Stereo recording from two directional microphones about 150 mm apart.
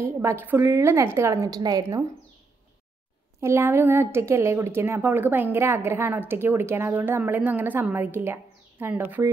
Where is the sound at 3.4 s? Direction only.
15° right (ahead or behind).